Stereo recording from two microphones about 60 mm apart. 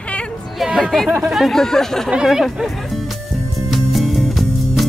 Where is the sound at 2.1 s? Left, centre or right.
Centre.